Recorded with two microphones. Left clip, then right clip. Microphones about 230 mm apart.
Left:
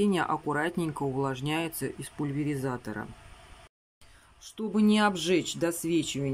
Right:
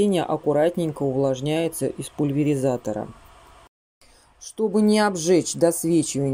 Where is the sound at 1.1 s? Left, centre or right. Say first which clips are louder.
Right 9 dB; left.